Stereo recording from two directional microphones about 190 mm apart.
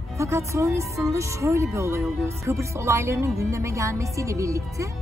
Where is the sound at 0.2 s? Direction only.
15° right (ahead or behind).